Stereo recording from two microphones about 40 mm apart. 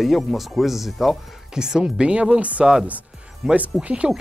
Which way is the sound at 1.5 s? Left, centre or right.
Centre.